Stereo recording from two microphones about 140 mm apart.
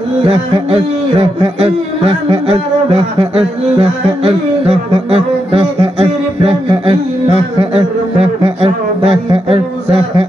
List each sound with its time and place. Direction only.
0.2 s a man's voice: 40° right (ahead or behind)